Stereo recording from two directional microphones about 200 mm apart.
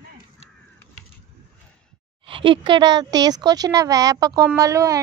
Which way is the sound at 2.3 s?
25° right (ahead or behind).